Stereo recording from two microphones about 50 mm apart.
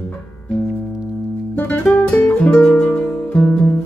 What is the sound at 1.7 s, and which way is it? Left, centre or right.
Music, left.